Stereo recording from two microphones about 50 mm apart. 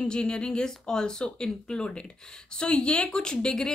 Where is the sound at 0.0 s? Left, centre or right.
Centre.